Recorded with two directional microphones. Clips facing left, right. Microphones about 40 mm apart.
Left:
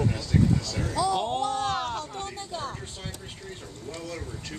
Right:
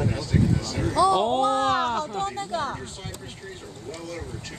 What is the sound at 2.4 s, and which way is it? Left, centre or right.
Speech, right.